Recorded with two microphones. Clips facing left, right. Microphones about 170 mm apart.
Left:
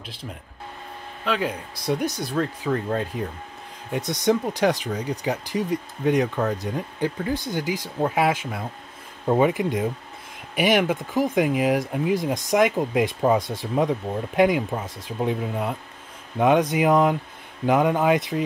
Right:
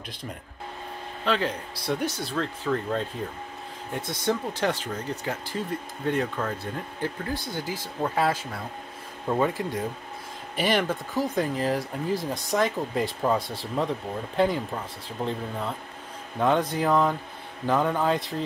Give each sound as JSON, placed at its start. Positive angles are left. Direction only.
{"t": 1.2, "sound": "speech", "side_deg": 10}